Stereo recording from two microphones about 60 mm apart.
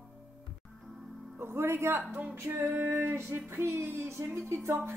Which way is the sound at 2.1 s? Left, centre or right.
Right.